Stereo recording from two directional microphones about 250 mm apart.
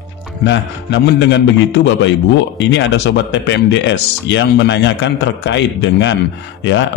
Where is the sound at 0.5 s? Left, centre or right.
Left.